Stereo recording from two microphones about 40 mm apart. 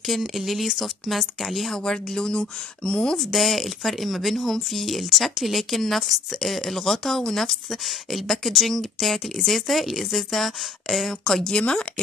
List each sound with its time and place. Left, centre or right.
0.0 s speech: centre
1.8 s speech: centre
3.2 s speech: centre
11.5 s speech: left